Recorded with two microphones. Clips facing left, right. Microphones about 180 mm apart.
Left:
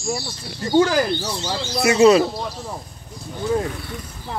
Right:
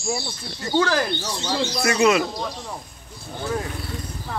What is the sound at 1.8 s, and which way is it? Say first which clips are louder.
Speech: left 6 dB; 25° left (ahead or behind).